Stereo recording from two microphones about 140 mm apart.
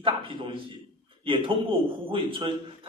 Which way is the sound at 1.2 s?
35° right (ahead or behind).